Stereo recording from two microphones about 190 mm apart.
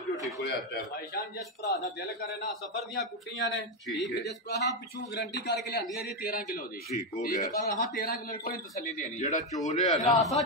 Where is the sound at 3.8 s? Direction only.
Centre (ahead or behind).